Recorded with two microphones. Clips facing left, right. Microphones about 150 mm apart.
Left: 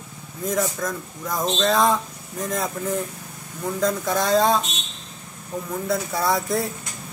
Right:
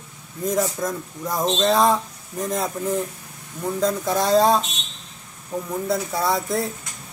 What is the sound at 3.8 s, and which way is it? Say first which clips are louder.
Speech: right 1 dB; 5° right (ahead or behind).